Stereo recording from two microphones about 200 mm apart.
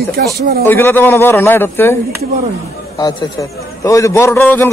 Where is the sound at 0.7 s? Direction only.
10° left (ahead or behind).